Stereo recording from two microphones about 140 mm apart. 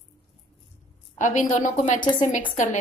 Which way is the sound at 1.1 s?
65° left (ahead or behind).